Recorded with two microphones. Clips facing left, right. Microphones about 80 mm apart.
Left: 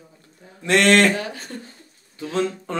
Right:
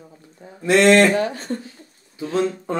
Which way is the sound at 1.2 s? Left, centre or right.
Right.